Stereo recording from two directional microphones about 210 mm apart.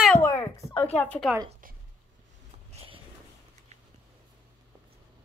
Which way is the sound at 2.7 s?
25° right (ahead or behind).